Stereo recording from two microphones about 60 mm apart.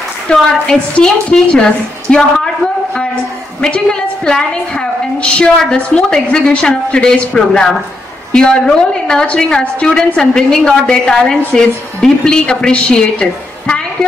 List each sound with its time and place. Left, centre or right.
0.3 s a woman's voice: centre